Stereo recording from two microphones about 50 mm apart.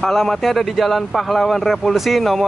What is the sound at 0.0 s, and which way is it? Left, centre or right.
Speech, centre.